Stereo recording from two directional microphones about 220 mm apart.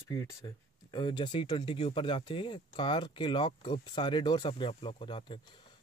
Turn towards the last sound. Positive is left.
turn(degrees=20)  # may be behind; listen again after turning